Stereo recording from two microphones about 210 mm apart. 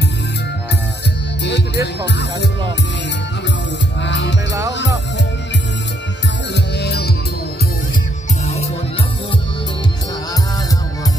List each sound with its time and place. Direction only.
1.4 s music: 55° left (ahead or behind)
4.0 s music: 55° left (ahead or behind)
6.5 s music: 55° left (ahead or behind)